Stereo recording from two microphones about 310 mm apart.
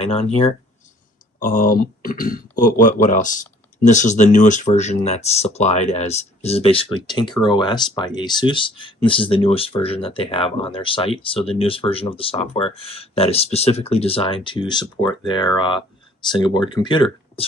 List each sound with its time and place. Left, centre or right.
0.0 s speech: centre